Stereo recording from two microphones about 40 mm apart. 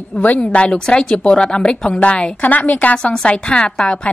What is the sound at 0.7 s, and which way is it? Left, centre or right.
A woman's voice, centre.